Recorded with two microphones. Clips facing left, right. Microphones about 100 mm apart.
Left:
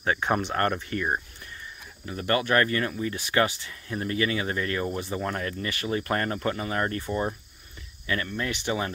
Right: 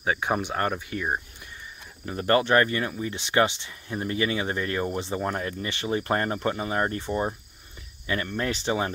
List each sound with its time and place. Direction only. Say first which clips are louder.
0.0 s speech: even; 10° right (ahead or behind)
2.0 s speech: right 3 dB; 35° right (ahead or behind)